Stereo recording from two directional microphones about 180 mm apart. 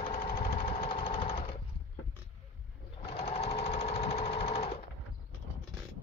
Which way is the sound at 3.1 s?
35° left (ahead or behind).